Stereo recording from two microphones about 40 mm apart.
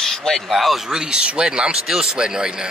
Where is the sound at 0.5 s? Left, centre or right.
Centre.